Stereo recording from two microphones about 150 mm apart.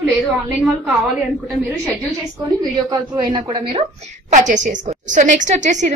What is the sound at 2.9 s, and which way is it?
Speech, 30° right (ahead or behind).